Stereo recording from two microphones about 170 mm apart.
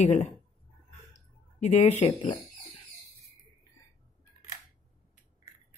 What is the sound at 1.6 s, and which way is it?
Speech, 45° left (ahead or behind).